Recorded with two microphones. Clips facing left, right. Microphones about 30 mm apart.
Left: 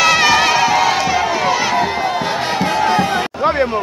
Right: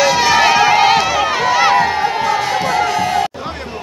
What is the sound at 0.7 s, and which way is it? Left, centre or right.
Run, right.